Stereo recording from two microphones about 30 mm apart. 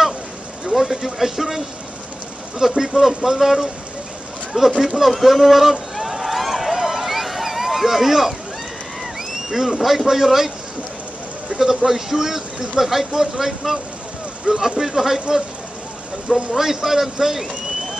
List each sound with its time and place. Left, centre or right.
0.7 s a man's voice: centre
2.7 s a man's voice: centre
4.6 s a sound: centre
9.5 s a man's voice: centre
11.5 s a man's voice: centre
14.5 s speech: right
14.8 s a man's voice: centre
16.5 s a man's voice: centre